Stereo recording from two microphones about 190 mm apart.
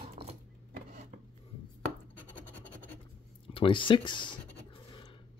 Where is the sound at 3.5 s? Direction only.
25° left (ahead or behind).